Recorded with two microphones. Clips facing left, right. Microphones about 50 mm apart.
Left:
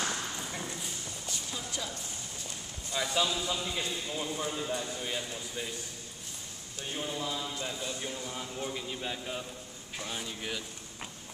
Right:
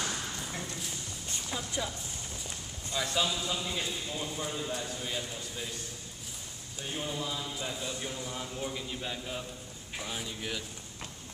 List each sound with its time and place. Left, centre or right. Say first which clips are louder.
1.5 s a sound: right 5 dB; centre
2.9 s speech: left 1 dB; centre
6.8 s speech: even; centre